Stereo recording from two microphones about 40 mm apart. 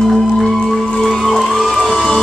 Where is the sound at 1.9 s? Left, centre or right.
Centre.